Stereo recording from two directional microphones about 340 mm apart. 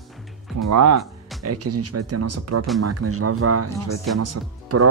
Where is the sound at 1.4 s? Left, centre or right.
Right.